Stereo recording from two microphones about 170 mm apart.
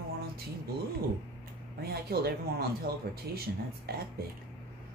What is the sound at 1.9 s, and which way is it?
A woman's voice, 65° right (ahead or behind).